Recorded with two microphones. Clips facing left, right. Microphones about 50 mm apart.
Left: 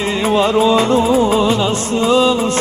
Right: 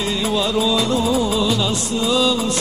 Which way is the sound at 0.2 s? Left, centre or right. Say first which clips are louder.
Left 8 dB; left.